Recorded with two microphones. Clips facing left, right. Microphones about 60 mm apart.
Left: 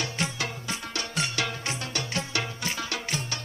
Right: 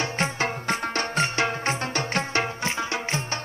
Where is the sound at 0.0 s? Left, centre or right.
Right.